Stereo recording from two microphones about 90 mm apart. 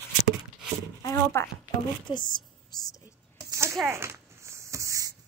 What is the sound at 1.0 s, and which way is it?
Speech, 35° left (ahead or behind).